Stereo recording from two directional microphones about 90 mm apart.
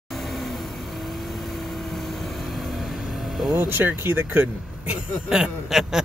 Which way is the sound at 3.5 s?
25° right (ahead or behind).